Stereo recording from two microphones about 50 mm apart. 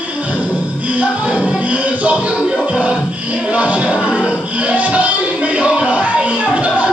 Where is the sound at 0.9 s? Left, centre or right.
Right.